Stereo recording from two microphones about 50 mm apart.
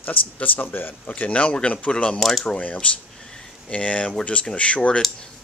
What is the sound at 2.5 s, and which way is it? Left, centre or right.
Speech, left.